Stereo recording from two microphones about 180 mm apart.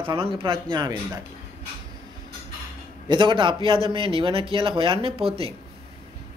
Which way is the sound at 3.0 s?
25° right (ahead or behind).